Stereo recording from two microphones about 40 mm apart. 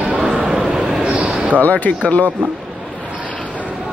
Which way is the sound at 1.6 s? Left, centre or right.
Left.